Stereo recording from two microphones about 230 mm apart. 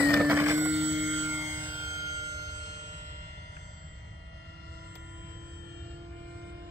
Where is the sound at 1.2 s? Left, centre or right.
Centre.